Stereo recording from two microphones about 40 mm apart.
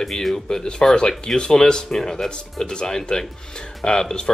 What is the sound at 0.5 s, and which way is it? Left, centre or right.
Speech, centre.